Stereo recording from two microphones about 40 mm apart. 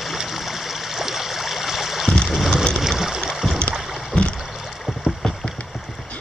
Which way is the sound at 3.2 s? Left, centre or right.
Centre.